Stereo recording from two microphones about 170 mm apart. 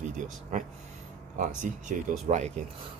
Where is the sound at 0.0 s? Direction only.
45° right (ahead or behind).